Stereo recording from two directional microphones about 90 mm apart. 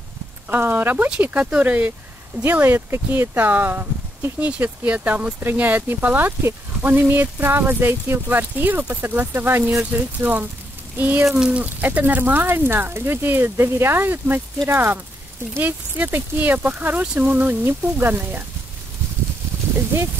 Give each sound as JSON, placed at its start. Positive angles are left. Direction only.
{"t": 0.5, "sound": "speech", "side_deg": -25}
{"t": 11.2, "sound": "speech", "side_deg": -10}